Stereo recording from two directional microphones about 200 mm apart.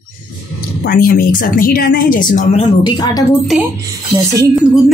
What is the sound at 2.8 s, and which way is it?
Speech, 20° left (ahead or behind).